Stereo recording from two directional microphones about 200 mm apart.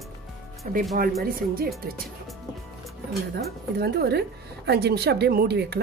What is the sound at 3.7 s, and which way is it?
A woman's voice, 55° right (ahead or behind).